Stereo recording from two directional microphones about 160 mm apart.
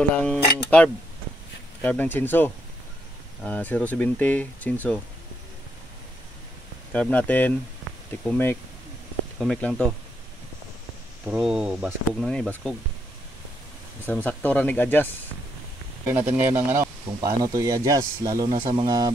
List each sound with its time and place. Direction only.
0.1 s speech: 5° left (ahead or behind)
6.9 s speech: 10° left (ahead or behind)
9.6 s speech: 5° left (ahead or behind)
11.2 s speech: 5° right (ahead or behind)
12.3 s speech: 5° left (ahead or behind)
14.0 s speech: 10° left (ahead or behind)
16.1 s speech: 10° right (ahead or behind)